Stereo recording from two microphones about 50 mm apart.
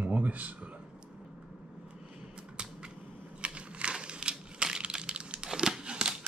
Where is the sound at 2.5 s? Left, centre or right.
Centre.